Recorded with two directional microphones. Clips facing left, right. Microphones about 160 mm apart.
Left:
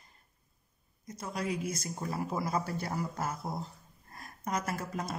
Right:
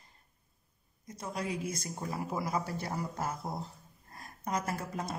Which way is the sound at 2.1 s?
15° right (ahead or behind).